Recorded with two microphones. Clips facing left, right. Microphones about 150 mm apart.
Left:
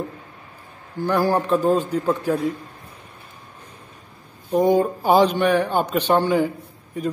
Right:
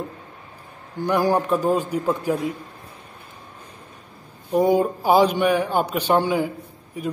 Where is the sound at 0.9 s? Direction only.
15° right (ahead or behind).